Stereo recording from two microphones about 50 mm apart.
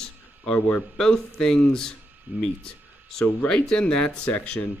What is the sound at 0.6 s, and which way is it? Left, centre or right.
Speech, left.